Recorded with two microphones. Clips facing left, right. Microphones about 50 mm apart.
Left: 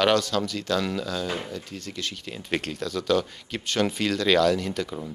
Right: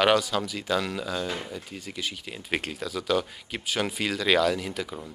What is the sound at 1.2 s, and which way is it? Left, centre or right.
Speech, centre.